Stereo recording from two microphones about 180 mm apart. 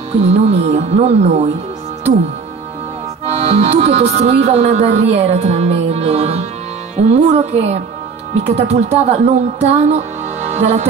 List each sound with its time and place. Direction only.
0.1 s speech: 35° right (ahead or behind)
3.3 s speech: 35° right (ahead or behind)
10.5 s music: 35° right (ahead or behind)